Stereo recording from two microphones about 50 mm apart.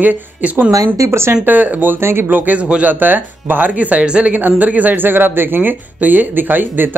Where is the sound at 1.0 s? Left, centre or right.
Right.